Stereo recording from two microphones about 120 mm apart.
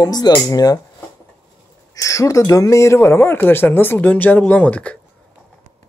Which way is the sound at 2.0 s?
25° left (ahead or behind).